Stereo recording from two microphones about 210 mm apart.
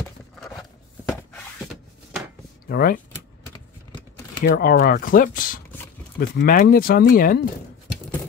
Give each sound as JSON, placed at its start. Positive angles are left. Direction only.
{"t": 2.7, "sound": "speech", "side_deg": 45}
{"t": 4.5, "sound": "speech", "side_deg": 45}